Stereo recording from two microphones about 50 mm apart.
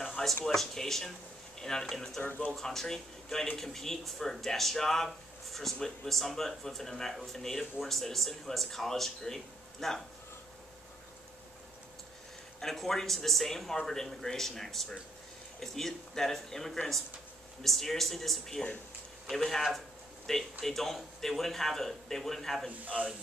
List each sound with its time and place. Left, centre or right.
0.0 s a sound: centre
0.5 s speech: centre
2.2 s speech: left
2.5 s speech: centre
12.5 s speech: centre